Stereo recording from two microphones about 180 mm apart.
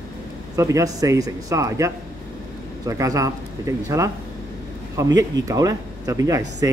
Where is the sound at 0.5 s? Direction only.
15° right (ahead or behind).